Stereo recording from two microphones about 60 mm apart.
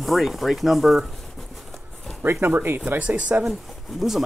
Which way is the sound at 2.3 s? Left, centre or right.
Right.